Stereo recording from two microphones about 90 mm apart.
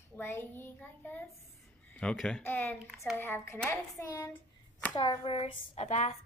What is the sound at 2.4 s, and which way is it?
Speech, 25° left (ahead or behind).